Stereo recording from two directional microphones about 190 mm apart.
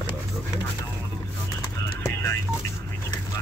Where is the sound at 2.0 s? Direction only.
15° left (ahead or behind).